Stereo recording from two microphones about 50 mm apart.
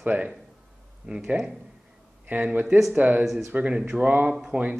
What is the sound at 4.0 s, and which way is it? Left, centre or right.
Speech, right.